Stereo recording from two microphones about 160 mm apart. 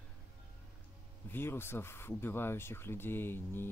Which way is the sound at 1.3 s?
15° left (ahead or behind).